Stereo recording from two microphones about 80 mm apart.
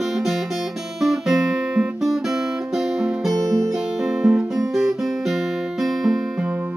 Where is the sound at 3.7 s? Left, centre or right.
Centre.